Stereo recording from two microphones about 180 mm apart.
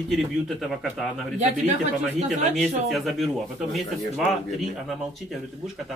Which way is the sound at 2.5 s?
Centre (ahead or behind).